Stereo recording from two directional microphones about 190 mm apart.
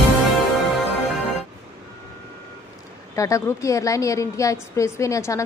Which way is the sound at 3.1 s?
15° left (ahead or behind).